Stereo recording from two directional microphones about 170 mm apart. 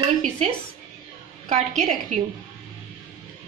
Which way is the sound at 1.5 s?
45° right (ahead or behind).